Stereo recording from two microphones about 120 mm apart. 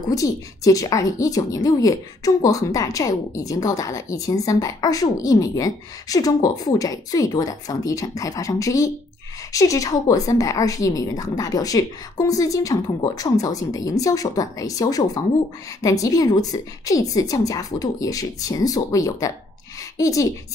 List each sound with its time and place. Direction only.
0.1 s a woman's voice: 30° left (ahead or behind)